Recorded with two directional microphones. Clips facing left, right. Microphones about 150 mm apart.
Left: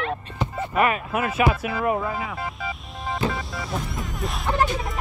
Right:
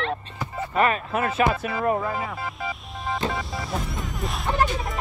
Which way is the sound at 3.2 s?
Centre (ahead or behind).